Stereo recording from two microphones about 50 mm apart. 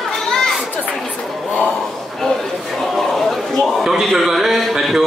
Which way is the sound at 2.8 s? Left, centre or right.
Centre.